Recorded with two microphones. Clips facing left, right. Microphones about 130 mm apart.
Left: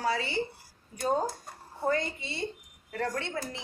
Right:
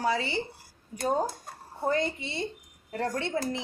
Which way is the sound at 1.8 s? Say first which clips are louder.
Right 2 dB; 20° right (ahead or behind).